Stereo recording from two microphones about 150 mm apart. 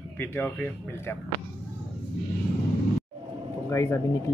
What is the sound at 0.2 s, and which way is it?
Speech, 15° left (ahead or behind).